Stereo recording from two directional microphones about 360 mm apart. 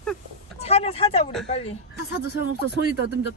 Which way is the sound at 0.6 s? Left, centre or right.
Centre.